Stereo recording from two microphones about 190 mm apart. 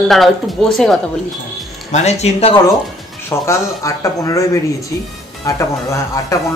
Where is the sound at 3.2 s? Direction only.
15° left (ahead or behind).